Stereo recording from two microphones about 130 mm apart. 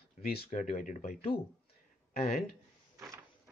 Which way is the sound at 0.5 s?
70° left (ahead or behind).